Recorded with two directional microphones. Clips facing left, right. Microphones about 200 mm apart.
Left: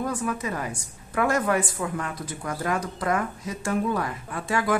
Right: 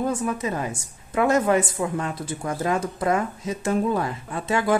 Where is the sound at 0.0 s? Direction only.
25° right (ahead or behind).